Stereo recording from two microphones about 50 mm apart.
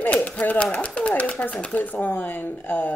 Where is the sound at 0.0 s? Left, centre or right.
Left.